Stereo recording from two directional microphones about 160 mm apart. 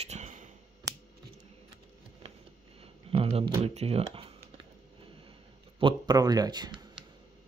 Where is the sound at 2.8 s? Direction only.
35° right (ahead or behind).